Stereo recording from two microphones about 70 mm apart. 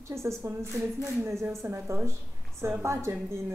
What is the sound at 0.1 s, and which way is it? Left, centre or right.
A woman's voice, right.